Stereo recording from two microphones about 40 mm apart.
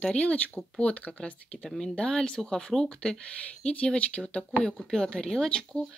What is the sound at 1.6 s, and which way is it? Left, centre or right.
A woman's voice, centre.